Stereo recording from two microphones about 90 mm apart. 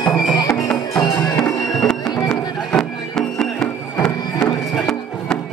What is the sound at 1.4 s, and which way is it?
Music, 5° left (ahead or behind).